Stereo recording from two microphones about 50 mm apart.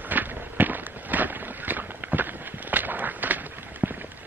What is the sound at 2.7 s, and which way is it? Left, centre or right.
Run, right.